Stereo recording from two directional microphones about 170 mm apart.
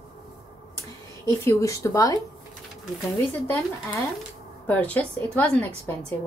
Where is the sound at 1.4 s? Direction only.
15° left (ahead or behind).